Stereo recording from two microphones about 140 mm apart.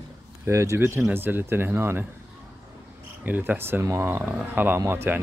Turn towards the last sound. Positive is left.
turn(degrees=-15)  # may be behind; listen again after turning